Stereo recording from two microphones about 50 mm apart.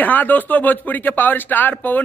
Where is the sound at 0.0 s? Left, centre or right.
Left.